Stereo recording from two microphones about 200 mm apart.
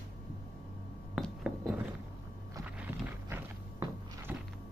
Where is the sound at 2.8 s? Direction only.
10° right (ahead or behind).